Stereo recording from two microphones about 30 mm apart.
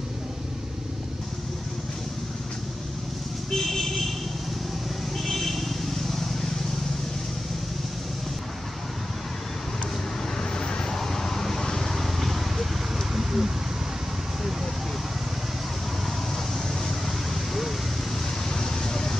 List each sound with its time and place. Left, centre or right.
3.5 s vehicle: centre
5.1 s vehicle: centre
10.3 s vehicle: left
11.9 s vehicle: centre
13.1 s a sound: centre
16.5 s vehicle: centre
18.5 s a sound: centre